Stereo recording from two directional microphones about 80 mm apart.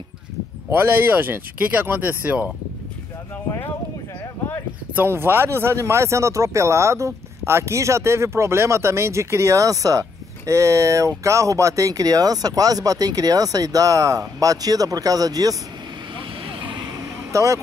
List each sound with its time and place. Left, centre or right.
0.7 s speech: right
4.9 s speech: right
16.4 s vehicle: right
17.3 s speech: right